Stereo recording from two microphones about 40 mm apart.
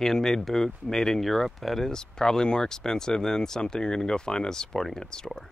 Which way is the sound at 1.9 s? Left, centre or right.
Centre.